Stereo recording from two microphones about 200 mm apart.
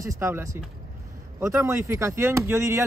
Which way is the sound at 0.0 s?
15° right (ahead or behind).